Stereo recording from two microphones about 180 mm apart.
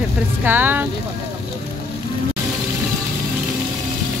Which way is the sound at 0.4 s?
10° right (ahead or behind).